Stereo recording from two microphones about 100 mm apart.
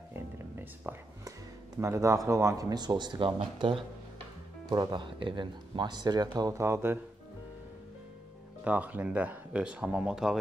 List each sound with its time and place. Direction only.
0.1 s music: 20° right (ahead or behind)
1.8 s speech: 30° right (ahead or behind); by 3.7 s 55° right (ahead or behind)
4.6 s speech: 45° right (ahead or behind)
6.6 s speech: 25° right (ahead or behind)
8.6 s speech: 15° right (ahead or behind)